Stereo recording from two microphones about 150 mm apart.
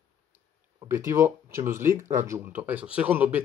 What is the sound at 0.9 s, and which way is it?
Speech, 20° right (ahead or behind).